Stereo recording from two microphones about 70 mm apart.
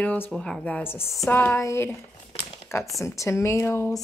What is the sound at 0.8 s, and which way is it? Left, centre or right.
Speech, left.